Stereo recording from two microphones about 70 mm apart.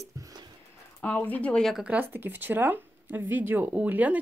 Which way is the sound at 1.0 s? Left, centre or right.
Centre.